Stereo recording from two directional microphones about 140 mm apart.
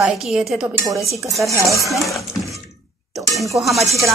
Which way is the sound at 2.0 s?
Centre (ahead or behind).